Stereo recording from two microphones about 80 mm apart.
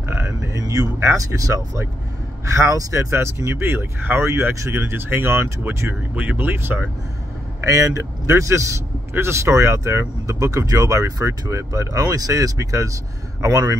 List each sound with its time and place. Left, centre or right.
0.1 s a sound: right
0.9 s speech: right
7.6 s speech: right